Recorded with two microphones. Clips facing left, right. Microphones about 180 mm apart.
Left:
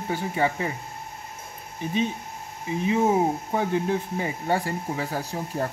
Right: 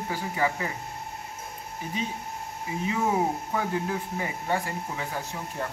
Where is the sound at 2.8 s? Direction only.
25° left (ahead or behind).